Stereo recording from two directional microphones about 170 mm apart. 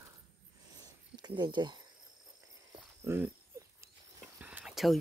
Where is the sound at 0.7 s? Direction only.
25° right (ahead or behind).